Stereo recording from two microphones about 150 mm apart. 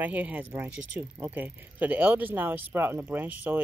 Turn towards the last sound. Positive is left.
turn(degrees=-10)  # may be behind; listen again after turning